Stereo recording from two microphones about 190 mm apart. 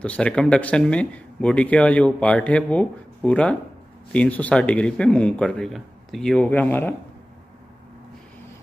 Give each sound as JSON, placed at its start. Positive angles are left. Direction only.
{"t": 0.0, "sound": "speech", "side_deg": 5}